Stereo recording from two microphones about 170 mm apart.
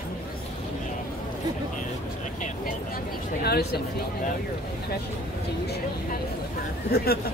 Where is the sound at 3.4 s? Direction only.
65° left (ahead or behind).